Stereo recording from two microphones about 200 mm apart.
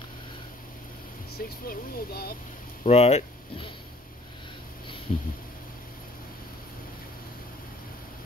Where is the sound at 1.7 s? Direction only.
50° left (ahead or behind).